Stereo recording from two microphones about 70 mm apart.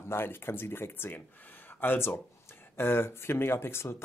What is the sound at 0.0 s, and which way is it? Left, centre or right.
Speech, left.